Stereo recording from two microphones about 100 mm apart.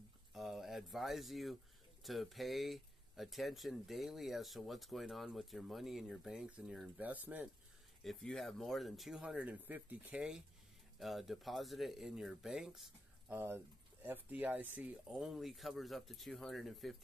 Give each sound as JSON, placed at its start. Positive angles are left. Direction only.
{"t": 0.3, "sound": "a sound", "side_deg": -5}
{"t": 2.0, "sound": "speech", "side_deg": 0}
{"t": 8.0, "sound": "speech", "side_deg": 5}
{"t": 9.2, "sound": "speech", "side_deg": -10}
{"t": 14.0, "sound": "speech", "side_deg": -20}
{"t": 15.0, "sound": "speech", "side_deg": -5}